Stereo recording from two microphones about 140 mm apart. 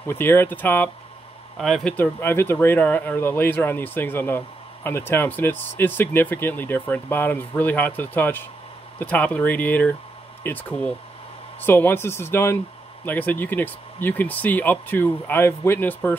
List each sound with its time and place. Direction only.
0.0 s speech: 15° left (ahead or behind)
2.1 s speech: 15° left (ahead or behind)